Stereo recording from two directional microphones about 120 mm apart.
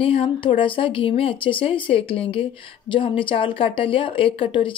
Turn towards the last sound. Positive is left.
turn(degrees=45)  # may be behind; listen again after turning